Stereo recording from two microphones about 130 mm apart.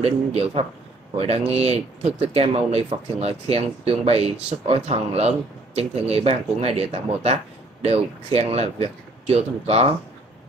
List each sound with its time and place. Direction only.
0.0 s speech: 50° right (ahead or behind)